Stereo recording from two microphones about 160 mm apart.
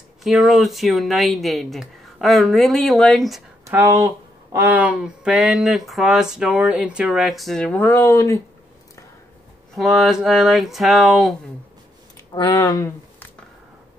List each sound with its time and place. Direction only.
0.2 s speech: centre (ahead or behind)
3.6 s speech: 20° right (ahead or behind); by 8.4 s 20° left (ahead or behind)
9.8 s speech: centre (ahead or behind)
12.4 s speech: 25° left (ahead or behind)